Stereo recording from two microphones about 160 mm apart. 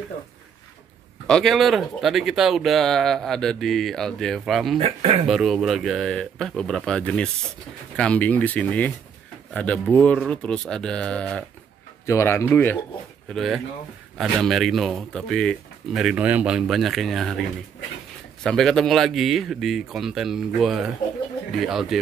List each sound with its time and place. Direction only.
1.2 s speech: 5° left (ahead or behind)
4.7 s speech: 40° right (ahead or behind)
5.2 s speech: centre (ahead or behind)
12.1 s speech: 15° left (ahead or behind)
13.3 s speech: centre (ahead or behind)
18.4 s speech: centre (ahead or behind)